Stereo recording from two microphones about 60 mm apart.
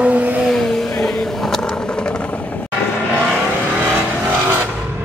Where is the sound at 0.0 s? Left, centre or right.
Right.